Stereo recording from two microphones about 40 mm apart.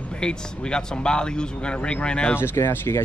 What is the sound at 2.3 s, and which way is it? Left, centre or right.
Speech, left.